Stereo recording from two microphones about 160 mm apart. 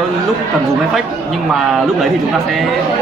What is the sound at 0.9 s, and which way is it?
Speech, centre (ahead or behind).